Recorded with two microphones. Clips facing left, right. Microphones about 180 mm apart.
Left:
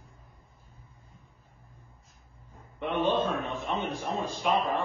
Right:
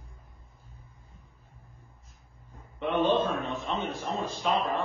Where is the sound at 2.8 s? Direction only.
10° left (ahead or behind).